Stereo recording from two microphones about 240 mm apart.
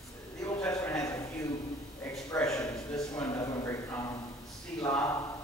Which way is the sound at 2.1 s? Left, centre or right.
Centre.